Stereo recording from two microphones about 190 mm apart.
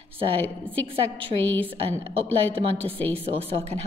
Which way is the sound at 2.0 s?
30° right (ahead or behind).